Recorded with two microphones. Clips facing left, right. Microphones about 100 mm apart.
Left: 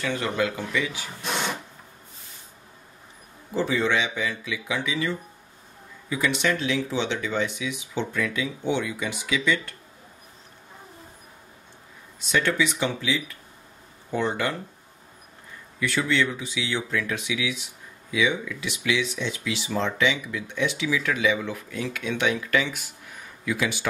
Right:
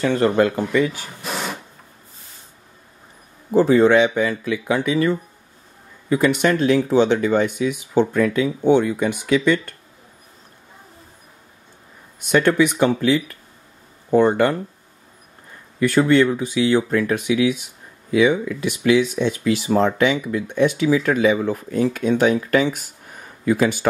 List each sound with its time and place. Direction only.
0.0 s speech: 40° right (ahead or behind)
1.2 s printer: centre (ahead or behind)
3.5 s speech: 45° right (ahead or behind)
12.2 s speech: 50° right (ahead or behind)
15.8 s speech: 50° right (ahead or behind)